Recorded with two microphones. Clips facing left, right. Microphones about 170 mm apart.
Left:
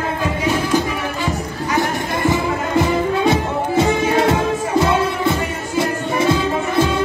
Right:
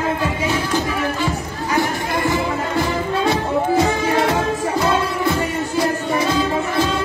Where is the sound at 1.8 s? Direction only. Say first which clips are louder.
Even; 20° left (ahead or behind).